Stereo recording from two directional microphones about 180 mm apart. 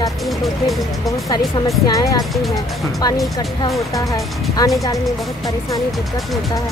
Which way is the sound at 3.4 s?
20° left (ahead or behind).